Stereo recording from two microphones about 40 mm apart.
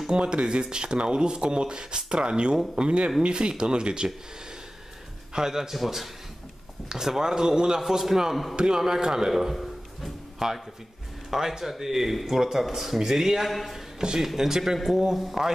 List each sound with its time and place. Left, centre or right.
0.0 s speech: right
5.3 s speech: centre
8.5 s speech: centre
13.9 s speech: centre